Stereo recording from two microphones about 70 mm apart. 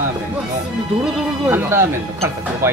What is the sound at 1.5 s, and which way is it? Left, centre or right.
Speech, right.